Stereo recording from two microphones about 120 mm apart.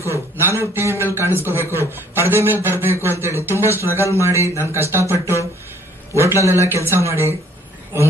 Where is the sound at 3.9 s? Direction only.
25° left (ahead or behind).